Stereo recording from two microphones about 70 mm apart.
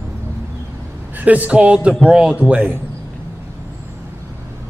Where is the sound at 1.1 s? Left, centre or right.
Right.